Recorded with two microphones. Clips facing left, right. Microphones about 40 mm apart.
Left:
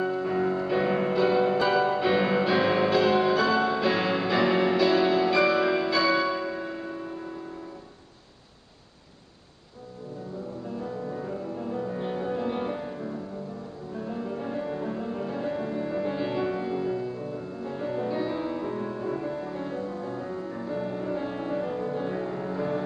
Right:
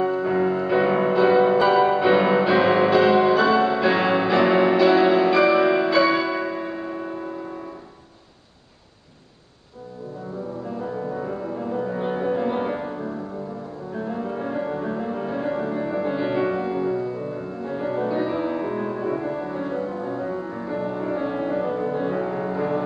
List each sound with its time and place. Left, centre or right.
0.0 s music: centre
6.4 s music: right
6.7 s church bell: right
11.1 s music: right